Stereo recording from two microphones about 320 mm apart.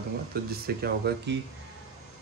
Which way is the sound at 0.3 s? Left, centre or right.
Right.